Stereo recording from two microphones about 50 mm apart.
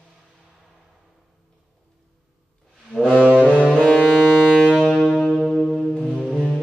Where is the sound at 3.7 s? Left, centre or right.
Left.